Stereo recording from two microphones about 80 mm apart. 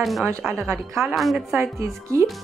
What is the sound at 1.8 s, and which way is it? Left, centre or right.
Speech, right.